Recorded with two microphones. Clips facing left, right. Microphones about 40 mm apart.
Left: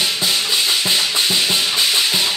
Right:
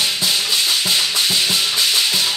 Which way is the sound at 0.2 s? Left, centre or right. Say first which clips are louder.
Even; centre.